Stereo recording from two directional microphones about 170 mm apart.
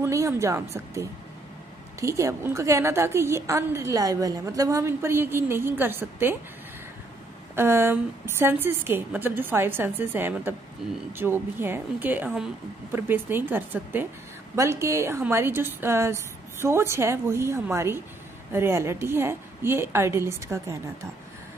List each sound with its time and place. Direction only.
0.0 s a woman's voice: 15° right (ahead or behind)
7.5 s a woman's voice: 15° right (ahead or behind)